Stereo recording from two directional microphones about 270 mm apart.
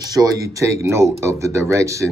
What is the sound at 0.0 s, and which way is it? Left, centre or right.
Speech, centre.